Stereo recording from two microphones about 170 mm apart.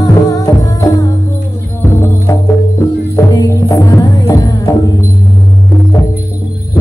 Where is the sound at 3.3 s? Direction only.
20° left (ahead or behind).